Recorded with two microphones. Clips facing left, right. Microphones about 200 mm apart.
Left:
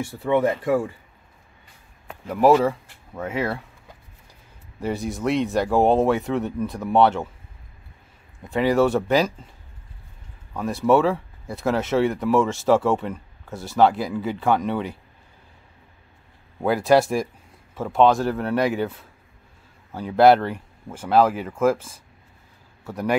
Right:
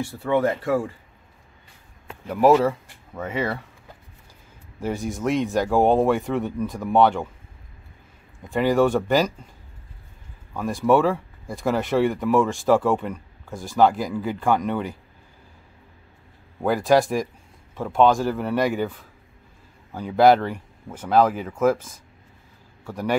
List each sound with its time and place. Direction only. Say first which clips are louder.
0.0 s speech: left 1 dB; 20° left (ahead or behind)
2.2 s speech: even; centre (ahead or behind)
5.1 s speech: even; centre (ahead or behind)
8.4 s speech: even; centre (ahead or behind)
10.5 s speech: even; centre (ahead or behind)
16.6 s speech: left 1 dB; 5° left (ahead or behind)
22.8 s speech: left 1 dB; 5° left (ahead or behind)